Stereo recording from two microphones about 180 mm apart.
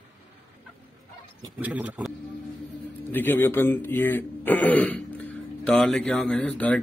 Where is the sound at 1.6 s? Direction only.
10° right (ahead or behind).